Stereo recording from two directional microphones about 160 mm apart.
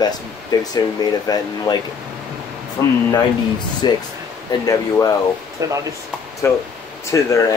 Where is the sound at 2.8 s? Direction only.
25° left (ahead or behind).